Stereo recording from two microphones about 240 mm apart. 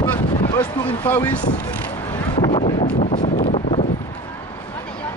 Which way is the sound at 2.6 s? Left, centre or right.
Left.